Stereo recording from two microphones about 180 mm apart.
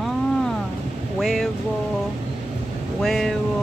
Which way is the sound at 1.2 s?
Centre (ahead or behind).